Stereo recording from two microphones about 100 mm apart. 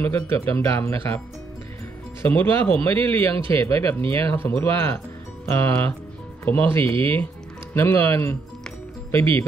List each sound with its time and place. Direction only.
0.0 s speech: 20° left (ahead or behind)
2.2 s speech: 20° left (ahead or behind)